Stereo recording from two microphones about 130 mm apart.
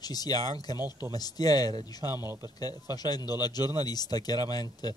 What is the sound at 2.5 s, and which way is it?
Speech, 30° left (ahead or behind).